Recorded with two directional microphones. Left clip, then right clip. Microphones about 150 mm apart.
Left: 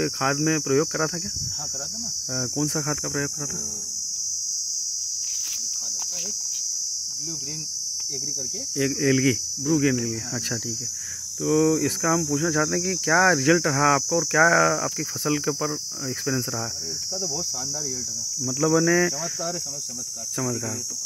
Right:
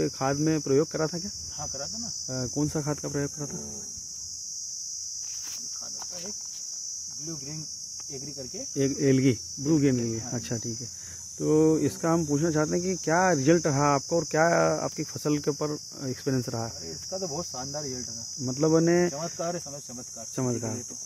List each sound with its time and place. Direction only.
0.0 s cricket: 5° left (ahead or behind)
2.3 s cricket: centre (ahead or behind)
8.7 s cricket: 5° right (ahead or behind)
11.4 s cricket: centre (ahead or behind)
18.6 s cricket: centre (ahead or behind)